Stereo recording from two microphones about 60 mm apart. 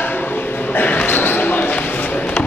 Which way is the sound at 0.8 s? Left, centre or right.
Left.